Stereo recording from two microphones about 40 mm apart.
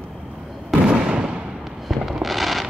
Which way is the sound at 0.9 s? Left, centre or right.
Right.